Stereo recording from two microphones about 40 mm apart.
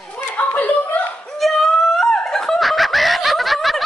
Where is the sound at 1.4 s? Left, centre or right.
Centre.